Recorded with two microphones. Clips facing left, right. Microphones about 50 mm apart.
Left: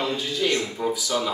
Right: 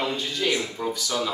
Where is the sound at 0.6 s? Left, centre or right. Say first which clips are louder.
Left 2 dB; centre.